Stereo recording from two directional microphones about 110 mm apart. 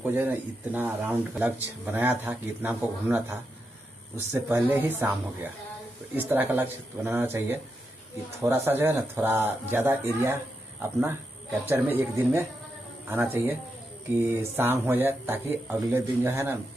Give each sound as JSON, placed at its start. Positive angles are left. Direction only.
{"t": 0.0, "sound": "speech", "side_deg": -15}
{"t": 4.5, "sound": "speech", "side_deg": -15}